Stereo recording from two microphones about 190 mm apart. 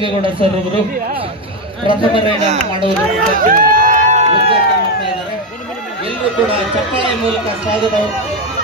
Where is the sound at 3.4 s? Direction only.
45° right (ahead or behind).